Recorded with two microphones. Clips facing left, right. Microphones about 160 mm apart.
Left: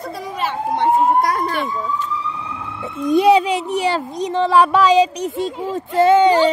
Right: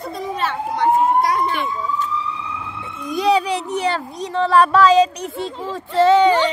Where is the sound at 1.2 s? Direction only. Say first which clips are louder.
Even; 45° left (ahead or behind).